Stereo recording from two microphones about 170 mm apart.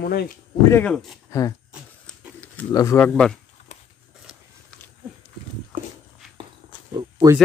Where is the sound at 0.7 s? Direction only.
10° left (ahead or behind).